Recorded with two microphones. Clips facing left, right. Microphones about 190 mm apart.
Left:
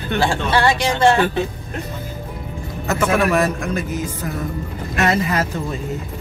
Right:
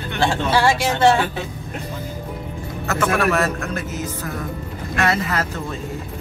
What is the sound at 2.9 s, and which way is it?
A man's voice, 15° left (ahead or behind).